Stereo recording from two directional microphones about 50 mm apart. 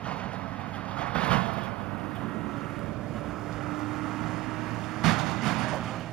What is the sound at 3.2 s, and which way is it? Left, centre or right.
Vehicle, centre.